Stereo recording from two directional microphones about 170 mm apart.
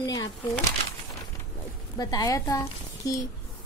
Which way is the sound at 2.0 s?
20° left (ahead or behind).